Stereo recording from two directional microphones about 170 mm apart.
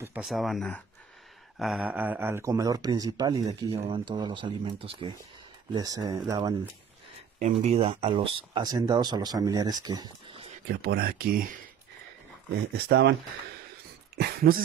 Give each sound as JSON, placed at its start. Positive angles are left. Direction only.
{"t": 0.0, "sound": "speech", "side_deg": -5}
{"t": 3.7, "sound": "speech", "side_deg": -35}
{"t": 7.3, "sound": "speech", "side_deg": -40}
{"t": 10.8, "sound": "speech", "side_deg": -65}
{"t": 12.7, "sound": "speech", "side_deg": -70}
{"t": 14.1, "sound": "speech", "side_deg": -65}